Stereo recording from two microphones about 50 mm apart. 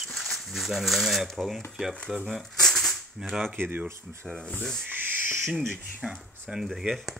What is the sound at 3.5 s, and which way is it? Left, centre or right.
Speech, right.